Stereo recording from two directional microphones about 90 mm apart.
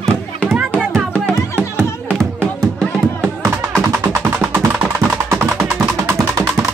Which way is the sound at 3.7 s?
30° right (ahead or behind).